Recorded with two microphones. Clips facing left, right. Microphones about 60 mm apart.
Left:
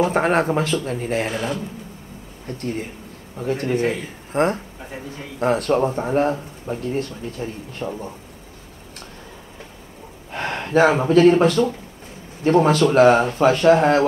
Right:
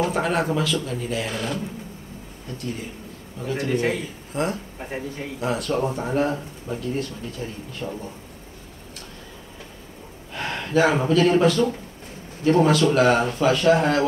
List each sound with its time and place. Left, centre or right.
0.1 s speech: left
1.3 s speech: left
2.4 s speech: left
4.7 s speech: right
5.4 s speech: left
10.3 s speech: left